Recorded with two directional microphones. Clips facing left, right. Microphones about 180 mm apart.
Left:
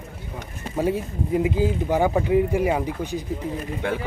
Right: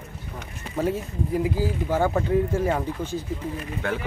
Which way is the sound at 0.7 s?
15° left (ahead or behind).